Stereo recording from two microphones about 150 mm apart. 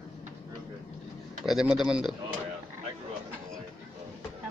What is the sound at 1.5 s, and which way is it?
Speech, 5° right (ahead or behind).